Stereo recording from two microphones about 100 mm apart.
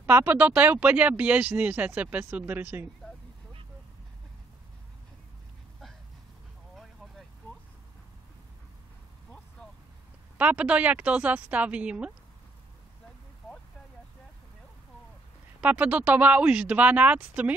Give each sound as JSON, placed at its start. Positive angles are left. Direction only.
{"t": 0.0, "sound": "speech", "side_deg": -20}
{"t": 10.3, "sound": "speech", "side_deg": -15}
{"t": 15.6, "sound": "speech", "side_deg": -15}